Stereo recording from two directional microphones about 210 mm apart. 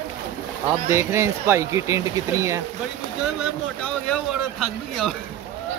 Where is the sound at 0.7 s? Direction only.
10° right (ahead or behind).